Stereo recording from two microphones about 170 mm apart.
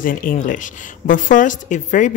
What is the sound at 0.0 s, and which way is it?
Speech, 55° left (ahead or behind).